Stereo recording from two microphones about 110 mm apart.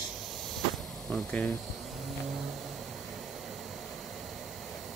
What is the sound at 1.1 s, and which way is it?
Speech, 15° left (ahead or behind).